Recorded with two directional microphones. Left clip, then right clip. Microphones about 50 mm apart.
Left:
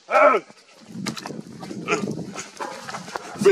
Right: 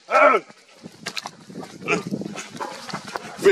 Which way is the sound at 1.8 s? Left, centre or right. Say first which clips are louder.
Right 1 dB; centre.